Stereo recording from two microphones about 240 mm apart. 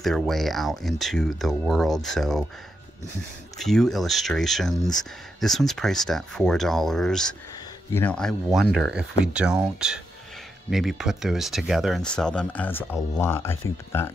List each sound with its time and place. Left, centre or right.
0.0 s speech: centre
3.5 s speech: centre